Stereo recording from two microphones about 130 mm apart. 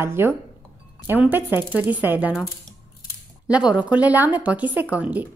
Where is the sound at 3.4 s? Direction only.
10° right (ahead or behind).